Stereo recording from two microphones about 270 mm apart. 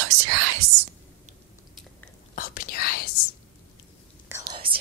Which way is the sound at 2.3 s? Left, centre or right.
Left.